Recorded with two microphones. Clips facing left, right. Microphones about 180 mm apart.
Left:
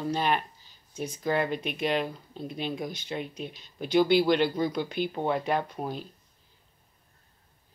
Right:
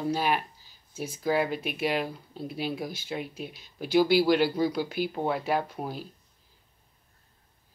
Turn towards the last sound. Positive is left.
turn(degrees=-5)  # may be behind; listen again after turning